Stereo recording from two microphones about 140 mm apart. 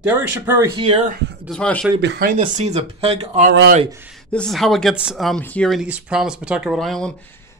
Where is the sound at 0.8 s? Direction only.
40° right (ahead or behind).